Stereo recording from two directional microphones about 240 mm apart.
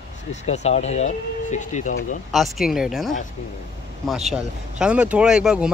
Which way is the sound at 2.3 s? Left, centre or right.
Centre.